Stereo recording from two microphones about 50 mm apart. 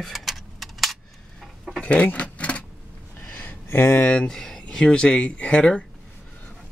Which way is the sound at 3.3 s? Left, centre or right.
Left.